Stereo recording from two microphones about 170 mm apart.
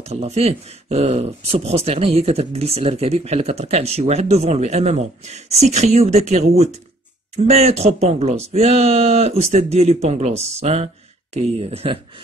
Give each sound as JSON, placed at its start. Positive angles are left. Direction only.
{"t": 0.0, "sound": "speech", "side_deg": -40}